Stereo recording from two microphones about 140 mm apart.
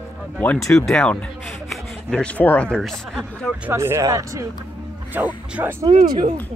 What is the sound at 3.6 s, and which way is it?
Speech, 15° right (ahead or behind).